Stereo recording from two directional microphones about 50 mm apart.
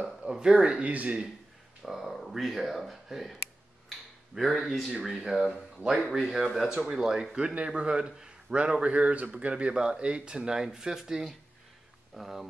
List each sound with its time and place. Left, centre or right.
0.2 s speech: centre
1.8 s speech: centre
4.4 s a man's voice: centre
6.7 s a man's voice: centre